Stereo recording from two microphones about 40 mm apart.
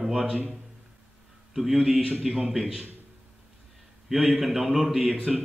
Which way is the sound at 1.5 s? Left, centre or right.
Centre.